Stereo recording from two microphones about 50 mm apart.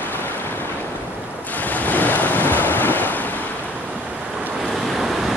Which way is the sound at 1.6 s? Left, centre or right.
Left.